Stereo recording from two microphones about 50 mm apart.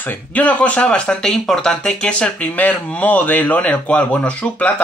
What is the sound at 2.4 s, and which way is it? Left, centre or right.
Speech, left.